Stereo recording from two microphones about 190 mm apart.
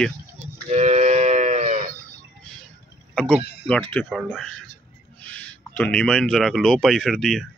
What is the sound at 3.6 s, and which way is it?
Speech, 5° left (ahead or behind).